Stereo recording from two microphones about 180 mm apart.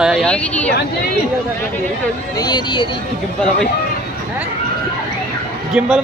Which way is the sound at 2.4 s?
25° left (ahead or behind).